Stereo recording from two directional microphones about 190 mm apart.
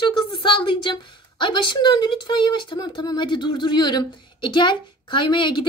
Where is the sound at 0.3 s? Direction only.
25° left (ahead or behind).